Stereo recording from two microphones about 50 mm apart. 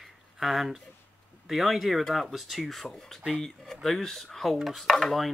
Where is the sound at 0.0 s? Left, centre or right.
Centre.